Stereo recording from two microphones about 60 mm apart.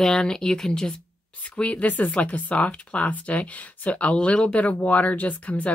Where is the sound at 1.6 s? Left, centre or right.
Left.